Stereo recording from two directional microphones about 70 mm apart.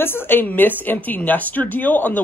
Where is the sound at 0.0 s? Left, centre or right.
Left.